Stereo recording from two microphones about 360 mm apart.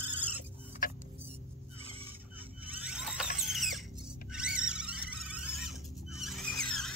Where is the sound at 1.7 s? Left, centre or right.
Centre.